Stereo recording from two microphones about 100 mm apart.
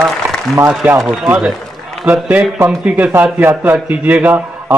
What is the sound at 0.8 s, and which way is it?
A man's voice, 15° right (ahead or behind).